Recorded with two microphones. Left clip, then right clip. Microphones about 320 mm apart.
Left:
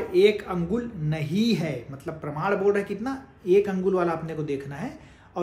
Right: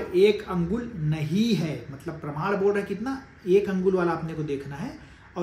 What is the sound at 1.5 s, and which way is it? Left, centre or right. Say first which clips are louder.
Speech: left 1 dB; centre.